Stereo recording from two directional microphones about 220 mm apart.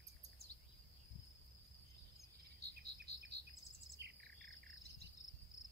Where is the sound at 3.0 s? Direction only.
45° right (ahead or behind).